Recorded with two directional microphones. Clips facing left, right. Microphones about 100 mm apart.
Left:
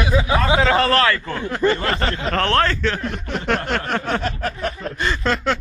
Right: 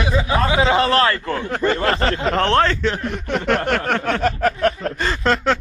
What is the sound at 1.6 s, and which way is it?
Speech, 5° left (ahead or behind).